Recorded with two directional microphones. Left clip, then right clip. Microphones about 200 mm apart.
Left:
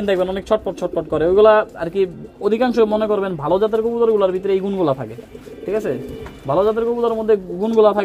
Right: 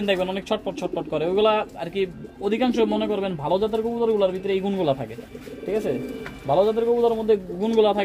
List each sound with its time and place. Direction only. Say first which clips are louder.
0.0 s a man's voice: left 5 dB; 25° left (ahead or behind)
6.5 s a man's voice: left 2 dB; 25° left (ahead or behind)